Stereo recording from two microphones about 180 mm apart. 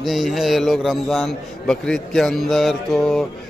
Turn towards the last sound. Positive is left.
turn(degrees=0)  # may be behind; listen again after turning